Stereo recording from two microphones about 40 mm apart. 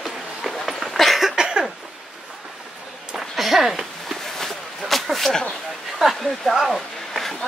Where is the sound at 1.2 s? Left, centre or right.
Centre.